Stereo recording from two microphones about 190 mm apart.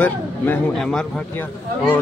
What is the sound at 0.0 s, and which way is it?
Speech, 5° left (ahead or behind).